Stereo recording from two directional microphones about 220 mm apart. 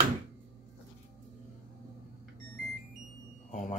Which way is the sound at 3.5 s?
30° left (ahead or behind).